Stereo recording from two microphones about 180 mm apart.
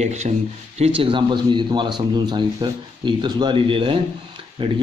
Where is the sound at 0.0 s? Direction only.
40° right (ahead or behind).